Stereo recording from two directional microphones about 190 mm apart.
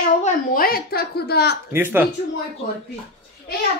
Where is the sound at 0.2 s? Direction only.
50° left (ahead or behind).